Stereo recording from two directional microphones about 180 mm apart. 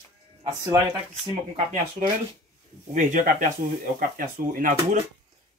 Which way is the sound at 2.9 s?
45° right (ahead or behind).